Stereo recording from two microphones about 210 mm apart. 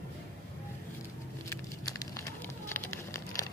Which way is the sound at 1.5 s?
15° left (ahead or behind).